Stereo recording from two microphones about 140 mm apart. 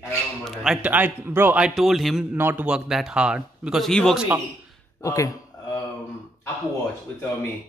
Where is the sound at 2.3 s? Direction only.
15° right (ahead or behind); by 4.2 s 5° left (ahead or behind).